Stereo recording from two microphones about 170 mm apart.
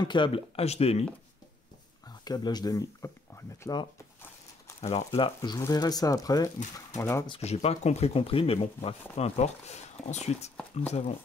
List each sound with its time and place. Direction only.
0.0 s speech: 30° left (ahead or behind)
2.2 s speech: 25° left (ahead or behind)
4.8 s speech: 35° left (ahead or behind); by 7.2 s 15° left (ahead or behind)
7.2 s speech: 35° left (ahead or behind)